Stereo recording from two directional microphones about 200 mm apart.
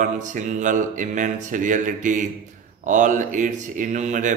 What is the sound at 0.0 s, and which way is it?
Mantra, 40° right (ahead or behind).